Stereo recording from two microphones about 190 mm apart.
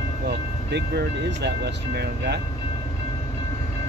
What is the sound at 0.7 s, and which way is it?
Speech, 60° right (ahead or behind).